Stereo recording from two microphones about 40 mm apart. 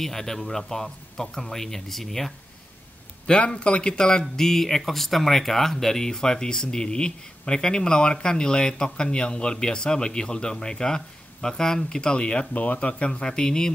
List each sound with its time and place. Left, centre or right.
0.0 s speech: centre
3.3 s speech: left
12.5 s speech: left; by 13.7 s centre